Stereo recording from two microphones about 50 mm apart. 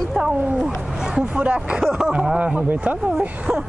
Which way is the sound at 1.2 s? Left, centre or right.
Right.